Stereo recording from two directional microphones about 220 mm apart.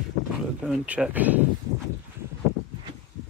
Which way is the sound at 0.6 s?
5° right (ahead or behind).